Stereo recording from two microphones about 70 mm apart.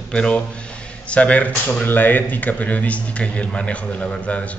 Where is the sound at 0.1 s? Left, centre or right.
Centre.